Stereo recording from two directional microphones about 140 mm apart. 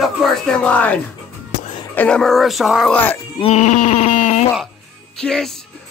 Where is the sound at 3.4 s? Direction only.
55° left (ahead or behind).